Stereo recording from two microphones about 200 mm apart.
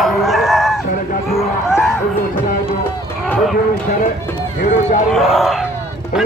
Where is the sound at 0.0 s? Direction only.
Centre (ahead or behind).